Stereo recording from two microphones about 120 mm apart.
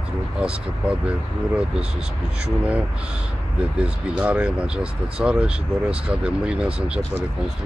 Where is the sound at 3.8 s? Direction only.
10° right (ahead or behind).